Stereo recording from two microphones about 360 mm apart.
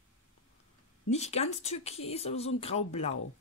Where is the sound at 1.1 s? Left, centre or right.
Centre.